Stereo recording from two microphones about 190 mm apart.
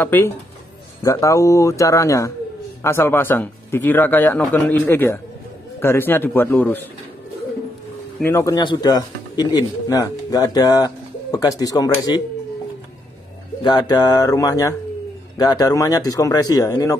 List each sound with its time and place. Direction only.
0.0 s speech: 10° left (ahead or behind)
8.2 s speech: 15° left (ahead or behind)
13.6 s speech: 25° left (ahead or behind)